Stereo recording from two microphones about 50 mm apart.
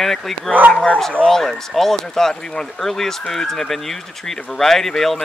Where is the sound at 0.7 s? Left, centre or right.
Centre.